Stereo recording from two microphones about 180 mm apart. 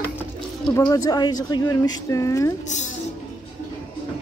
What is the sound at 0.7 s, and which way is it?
Speech, 15° left (ahead or behind).